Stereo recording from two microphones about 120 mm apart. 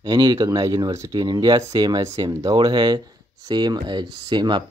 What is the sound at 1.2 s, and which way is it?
Speech, 40° right (ahead or behind).